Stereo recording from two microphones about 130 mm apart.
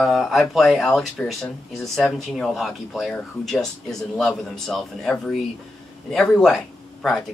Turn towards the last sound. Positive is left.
turn(degrees=0)  # may be behind; listen again after turning